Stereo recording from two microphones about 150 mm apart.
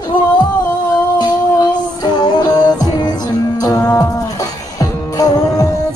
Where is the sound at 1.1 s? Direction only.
30° left (ahead or behind).